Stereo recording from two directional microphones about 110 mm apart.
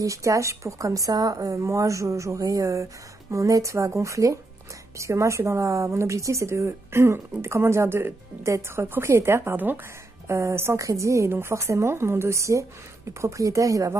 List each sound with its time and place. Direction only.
0.0 s speech: 30° right (ahead or behind)